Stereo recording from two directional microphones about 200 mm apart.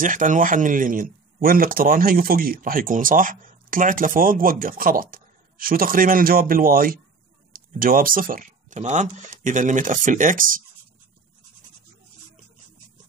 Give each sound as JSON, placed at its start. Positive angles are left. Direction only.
{"t": 0.0, "sound": "speech", "side_deg": -40}